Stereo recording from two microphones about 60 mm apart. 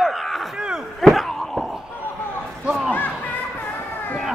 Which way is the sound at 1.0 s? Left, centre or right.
Centre.